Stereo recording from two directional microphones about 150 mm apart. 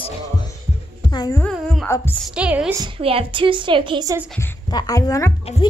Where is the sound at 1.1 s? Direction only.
25° left (ahead or behind).